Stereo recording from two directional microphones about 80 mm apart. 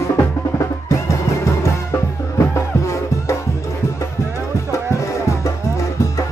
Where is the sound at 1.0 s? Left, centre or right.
Left.